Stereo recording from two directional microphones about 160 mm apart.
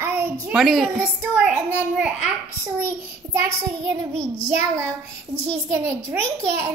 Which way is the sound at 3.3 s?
15° right (ahead or behind).